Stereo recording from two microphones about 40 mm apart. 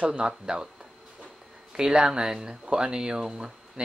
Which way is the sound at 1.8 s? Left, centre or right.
Centre.